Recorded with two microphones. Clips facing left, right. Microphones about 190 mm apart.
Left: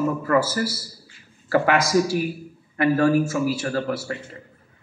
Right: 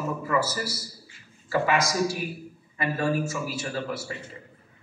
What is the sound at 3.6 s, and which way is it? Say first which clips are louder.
Speech: left 6 dB; 60° left (ahead or behind).